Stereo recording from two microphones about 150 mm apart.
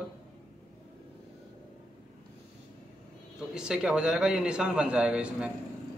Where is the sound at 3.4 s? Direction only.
5° right (ahead or behind).